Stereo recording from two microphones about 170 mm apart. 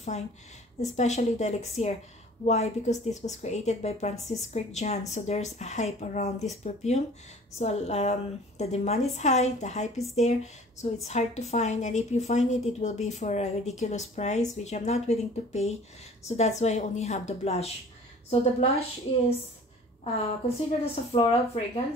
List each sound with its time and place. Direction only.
0.1 s a woman's voice: 40° left (ahead or behind)
20.4 s a woman's voice: 35° left (ahead or behind)